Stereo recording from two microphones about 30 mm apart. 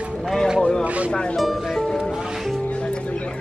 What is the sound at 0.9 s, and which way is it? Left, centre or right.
Speech, right.